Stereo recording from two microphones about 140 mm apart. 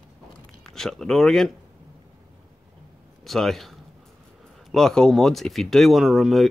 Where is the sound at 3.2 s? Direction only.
Centre (ahead or behind).